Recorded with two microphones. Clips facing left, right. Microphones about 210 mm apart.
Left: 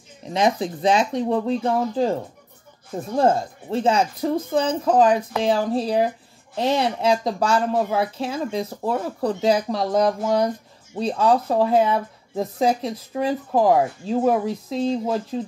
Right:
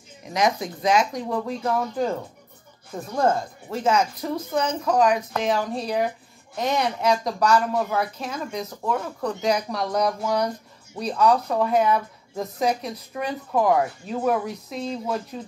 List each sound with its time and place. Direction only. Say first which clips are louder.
0.2 s speech: left 3 dB; 30° left (ahead or behind)